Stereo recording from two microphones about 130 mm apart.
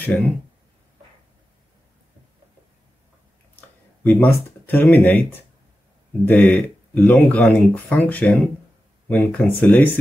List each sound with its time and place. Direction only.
0.1 s speech: 10° left (ahead or behind)
4.0 s speech: 15° left (ahead or behind)
6.2 s speech: 15° left (ahead or behind)